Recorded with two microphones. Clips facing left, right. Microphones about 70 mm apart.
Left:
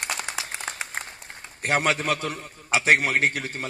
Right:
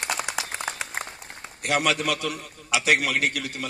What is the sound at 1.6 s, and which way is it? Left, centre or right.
A man's voice, left.